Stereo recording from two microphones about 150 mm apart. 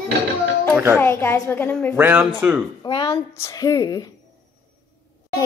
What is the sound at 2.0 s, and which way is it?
Speech, 10° right (ahead or behind).